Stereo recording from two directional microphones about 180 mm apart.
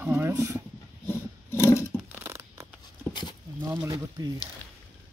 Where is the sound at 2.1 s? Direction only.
15° right (ahead or behind).